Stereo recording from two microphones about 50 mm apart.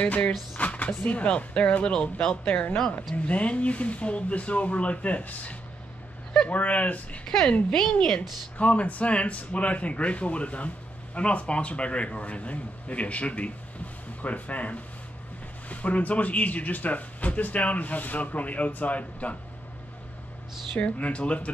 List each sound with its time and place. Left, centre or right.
0.0 s speech: left
7.2 s a woman's voice: centre
8.2 s speech: left
20.8 s speech: left